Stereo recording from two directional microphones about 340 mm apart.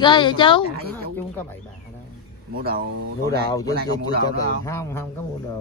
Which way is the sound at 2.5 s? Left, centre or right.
Right.